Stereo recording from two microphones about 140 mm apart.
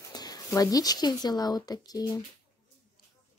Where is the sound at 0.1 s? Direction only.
30° left (ahead or behind).